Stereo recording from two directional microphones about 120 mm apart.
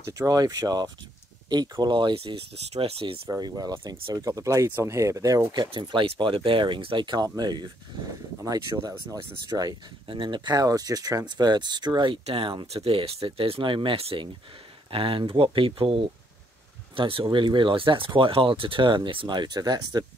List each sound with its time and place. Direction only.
0.0 s speech: 30° right (ahead or behind)
2.1 s speech: 55° right (ahead or behind)
3.3 s speech: 35° right (ahead or behind)
10.0 s speech: 45° right (ahead or behind)